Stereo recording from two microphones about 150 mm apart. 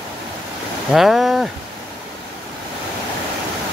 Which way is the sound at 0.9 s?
Centre (ahead or behind).